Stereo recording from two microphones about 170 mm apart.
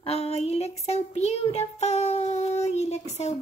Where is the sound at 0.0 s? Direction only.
35° left (ahead or behind).